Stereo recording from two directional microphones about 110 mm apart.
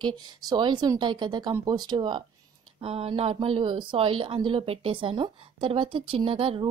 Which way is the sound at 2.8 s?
60° right (ahead or behind).